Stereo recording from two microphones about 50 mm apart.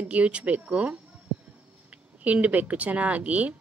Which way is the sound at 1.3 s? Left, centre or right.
Right.